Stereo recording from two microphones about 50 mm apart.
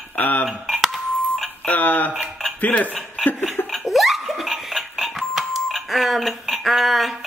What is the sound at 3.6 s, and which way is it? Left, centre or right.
Laughter, left.